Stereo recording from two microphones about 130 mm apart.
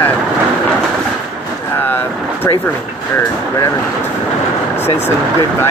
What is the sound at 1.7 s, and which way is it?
Boat, 15° left (ahead or behind).